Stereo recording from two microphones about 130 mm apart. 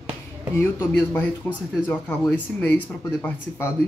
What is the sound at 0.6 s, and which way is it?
Speech, 15° left (ahead or behind).